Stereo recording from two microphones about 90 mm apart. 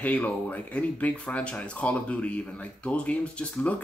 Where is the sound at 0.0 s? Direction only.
15° left (ahead or behind).